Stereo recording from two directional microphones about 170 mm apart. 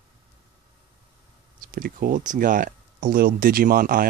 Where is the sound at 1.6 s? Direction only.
60° right (ahead or behind).